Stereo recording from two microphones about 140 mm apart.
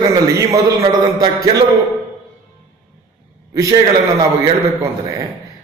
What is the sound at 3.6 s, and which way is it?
A woman's voice, 25° right (ahead or behind).